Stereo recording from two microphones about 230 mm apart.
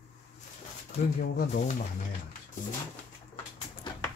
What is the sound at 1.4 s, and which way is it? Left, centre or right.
Speech, left.